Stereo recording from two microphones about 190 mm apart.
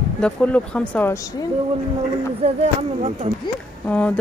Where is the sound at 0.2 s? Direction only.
5° left (ahead or behind).